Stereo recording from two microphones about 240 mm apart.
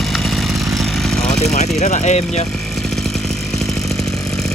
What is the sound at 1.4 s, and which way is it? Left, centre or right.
Speech, left.